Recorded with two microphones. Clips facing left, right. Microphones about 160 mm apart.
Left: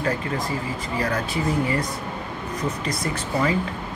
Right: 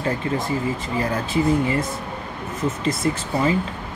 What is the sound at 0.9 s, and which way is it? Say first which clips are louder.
Speech: right 2 dB; 25° right (ahead or behind).